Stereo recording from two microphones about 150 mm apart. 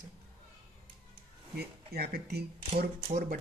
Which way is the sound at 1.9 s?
90° right.